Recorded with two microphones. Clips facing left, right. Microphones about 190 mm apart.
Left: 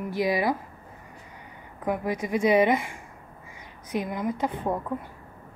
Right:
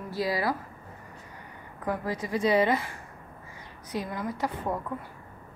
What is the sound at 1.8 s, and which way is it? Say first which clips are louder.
A woman's voice: left 3 dB; 20° left (ahead or behind).